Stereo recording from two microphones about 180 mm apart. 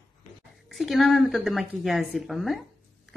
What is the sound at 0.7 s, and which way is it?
Speech, centre (ahead or behind).